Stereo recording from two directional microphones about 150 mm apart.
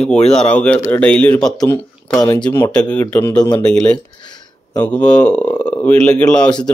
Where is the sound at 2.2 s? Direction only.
30° left (ahead or behind).